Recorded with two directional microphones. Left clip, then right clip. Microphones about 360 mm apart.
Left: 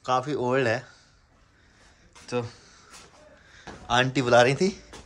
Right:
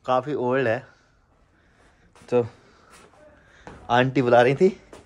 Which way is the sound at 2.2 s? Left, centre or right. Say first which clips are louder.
Right 8 dB; centre.